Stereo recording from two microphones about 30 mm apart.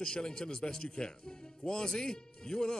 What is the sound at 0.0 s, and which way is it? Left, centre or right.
Speech, left.